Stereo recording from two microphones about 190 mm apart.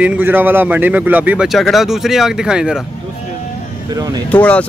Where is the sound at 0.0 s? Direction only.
10° right (ahead or behind).